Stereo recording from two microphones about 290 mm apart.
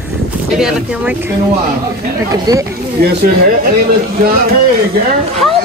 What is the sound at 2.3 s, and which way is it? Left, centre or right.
Speech, centre.